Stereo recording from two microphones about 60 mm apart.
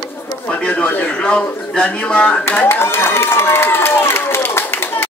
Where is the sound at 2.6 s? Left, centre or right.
Left.